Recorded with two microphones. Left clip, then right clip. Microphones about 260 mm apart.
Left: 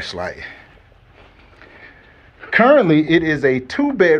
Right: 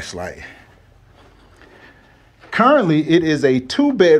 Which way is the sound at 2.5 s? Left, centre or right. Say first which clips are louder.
Left 2 dB; centre.